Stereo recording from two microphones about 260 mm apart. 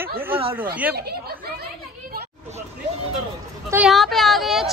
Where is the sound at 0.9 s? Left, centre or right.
Right.